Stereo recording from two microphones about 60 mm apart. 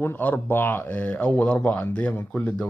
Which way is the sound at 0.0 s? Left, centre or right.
Left.